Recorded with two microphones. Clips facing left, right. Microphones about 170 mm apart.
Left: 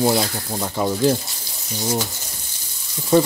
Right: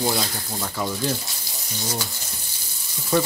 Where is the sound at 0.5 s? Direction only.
25° left (ahead or behind).